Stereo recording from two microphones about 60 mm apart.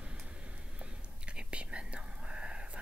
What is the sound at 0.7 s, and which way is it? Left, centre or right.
Whispering, centre.